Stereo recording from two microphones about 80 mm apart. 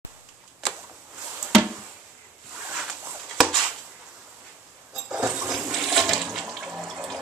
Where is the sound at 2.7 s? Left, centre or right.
Centre.